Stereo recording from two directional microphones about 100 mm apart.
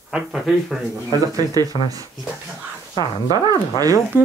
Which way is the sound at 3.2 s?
40° right (ahead or behind).